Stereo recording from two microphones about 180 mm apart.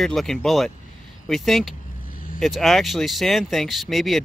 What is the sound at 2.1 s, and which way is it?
Vehicle, 50° left (ahead or behind).